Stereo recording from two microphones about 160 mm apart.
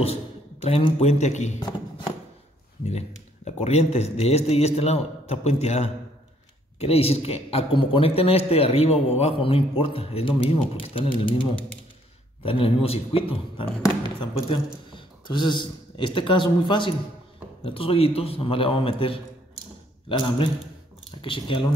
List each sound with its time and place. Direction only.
0.0 s a man's voice: 40° left (ahead or behind)
1.6 s a sound: 30° left (ahead or behind)
3.4 s a man's voice: 40° left (ahead or behind)
12.4 s a man's voice: 35° left (ahead or behind)